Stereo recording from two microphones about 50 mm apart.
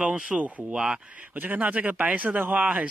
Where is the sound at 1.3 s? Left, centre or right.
Right.